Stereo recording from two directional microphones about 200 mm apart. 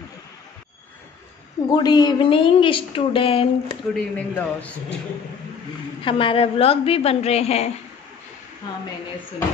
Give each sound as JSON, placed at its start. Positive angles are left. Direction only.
{"t": 1.7, "sound": "a woman's voice", "side_deg": 20}
{"t": 3.9, "sound": "a man's voice", "side_deg": 10}
{"t": 6.0, "sound": "a woman's voice", "side_deg": 25}